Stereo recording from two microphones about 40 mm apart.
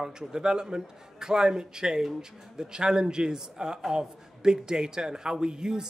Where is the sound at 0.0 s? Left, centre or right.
Centre.